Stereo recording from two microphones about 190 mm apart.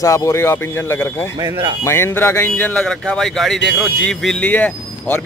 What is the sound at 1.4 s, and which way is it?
Speech, 20° right (ahead or behind).